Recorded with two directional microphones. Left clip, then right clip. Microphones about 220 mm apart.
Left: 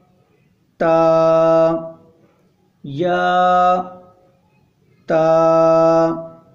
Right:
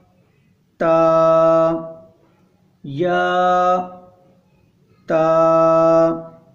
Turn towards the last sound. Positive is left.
turn(degrees=10)  # may be behind; listen again after turning